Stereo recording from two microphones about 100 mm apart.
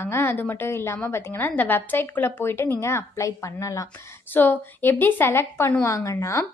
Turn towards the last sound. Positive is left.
turn(degrees=30)  # may be behind; listen again after turning